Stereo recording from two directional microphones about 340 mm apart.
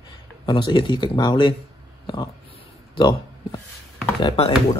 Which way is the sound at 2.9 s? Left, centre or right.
Centre.